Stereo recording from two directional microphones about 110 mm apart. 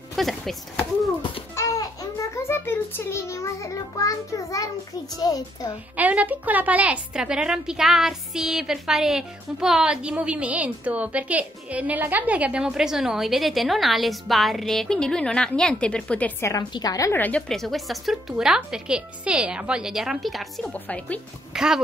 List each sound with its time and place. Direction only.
0.1 s chop: centre (ahead or behind)
2.3 s a child's voice: 20° left (ahead or behind)
5.9 s a woman's voice: 15° right (ahead or behind); by 16.3 s 10° left (ahead or behind)
16.3 s a child's voice: 25° left (ahead or behind)
17.1 s speech: 15° left (ahead or behind)
17.5 s a woman's voice: centre (ahead or behind)
20.7 s speech: 15° left (ahead or behind)
21.5 s a woman's voice: 5° right (ahead or behind)